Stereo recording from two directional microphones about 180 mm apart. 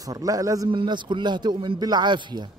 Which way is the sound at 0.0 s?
20° right (ahead or behind).